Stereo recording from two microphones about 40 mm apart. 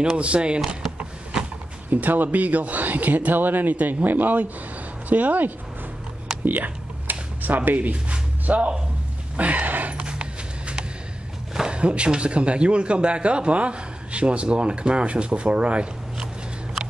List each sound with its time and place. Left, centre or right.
0.0 s speech: right
1.9 s speech: right
6.4 s computer keyboard: right
8.5 s a sound: right
9.9 s a sound: right
11.6 s speech: right